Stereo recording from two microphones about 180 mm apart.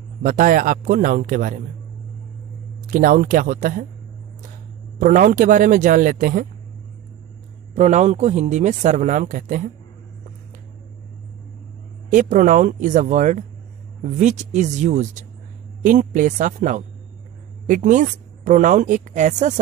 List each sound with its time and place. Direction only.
0.2 s speech: 50° right (ahead or behind)
2.9 s speech: 50° right (ahead or behind)
5.0 s speech: 45° right (ahead or behind)
7.7 s speech: 40° right (ahead or behind)
12.1 s speech: 45° right (ahead or behind)